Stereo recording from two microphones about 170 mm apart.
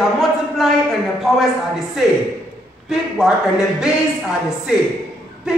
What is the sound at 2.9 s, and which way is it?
Speech, 5° right (ahead or behind).